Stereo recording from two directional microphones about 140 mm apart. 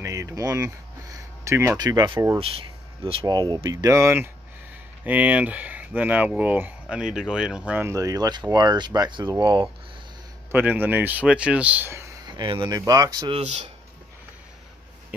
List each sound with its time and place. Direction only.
0.0 s a sound: 25° right (ahead or behind)
1.8 s speech: 30° right (ahead or behind)
3.3 s speech: 30° right (ahead or behind); by 7.9 s 10° right (ahead or behind)
7.9 s speech: 25° right (ahead or behind)
10.5 s speech: 10° right (ahead or behind)
12.3 s speech: 35° right (ahead or behind)